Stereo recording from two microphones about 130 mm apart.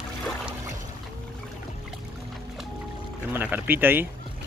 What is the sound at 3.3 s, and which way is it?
Speech, 15° right (ahead or behind).